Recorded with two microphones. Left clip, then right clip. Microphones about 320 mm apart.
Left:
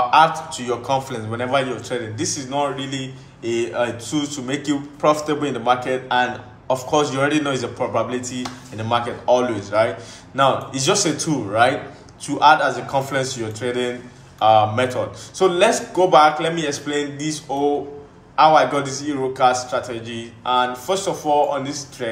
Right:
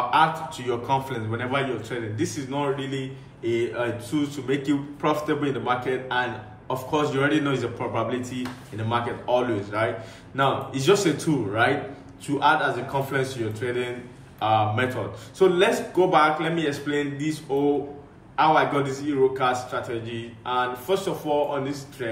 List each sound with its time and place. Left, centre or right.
0.1 s a man's voice: centre